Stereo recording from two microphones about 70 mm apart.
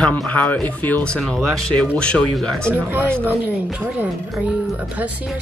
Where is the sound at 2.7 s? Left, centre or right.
Right.